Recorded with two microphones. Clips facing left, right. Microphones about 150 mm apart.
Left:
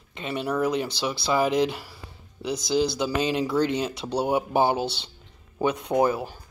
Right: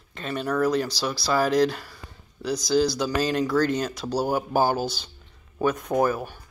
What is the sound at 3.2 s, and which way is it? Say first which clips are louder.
Speech: right 1 dB; 15° left (ahead or behind).